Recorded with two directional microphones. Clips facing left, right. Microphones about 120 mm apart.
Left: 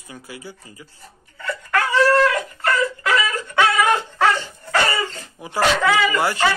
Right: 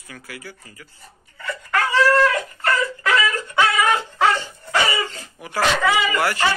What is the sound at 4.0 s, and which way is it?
Dog, 15° right (ahead or behind).